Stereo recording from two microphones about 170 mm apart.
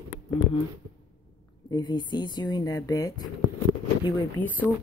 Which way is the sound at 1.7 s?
25° left (ahead or behind).